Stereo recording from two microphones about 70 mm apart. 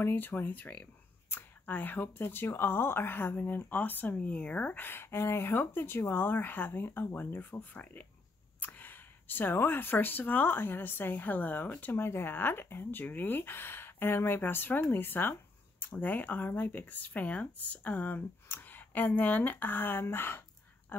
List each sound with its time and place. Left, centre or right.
0.0 s speech: left